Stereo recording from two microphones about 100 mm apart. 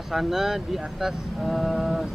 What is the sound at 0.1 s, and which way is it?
Speech, 5° right (ahead or behind).